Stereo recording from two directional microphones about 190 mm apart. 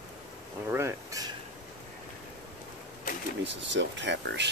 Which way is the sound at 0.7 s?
15° right (ahead or behind).